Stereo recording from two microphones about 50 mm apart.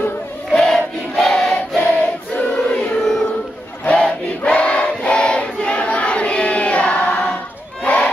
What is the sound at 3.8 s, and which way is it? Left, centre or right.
Choir, left.